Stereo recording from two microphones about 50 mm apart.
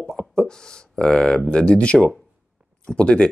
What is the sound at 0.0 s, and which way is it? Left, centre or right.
Beatboxing, centre.